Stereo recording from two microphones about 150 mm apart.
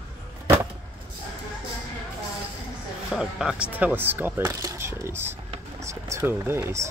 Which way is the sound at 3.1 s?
5° right (ahead or behind).